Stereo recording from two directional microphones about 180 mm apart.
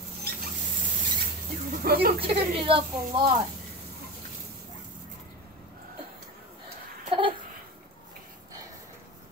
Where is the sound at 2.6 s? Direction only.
30° right (ahead or behind).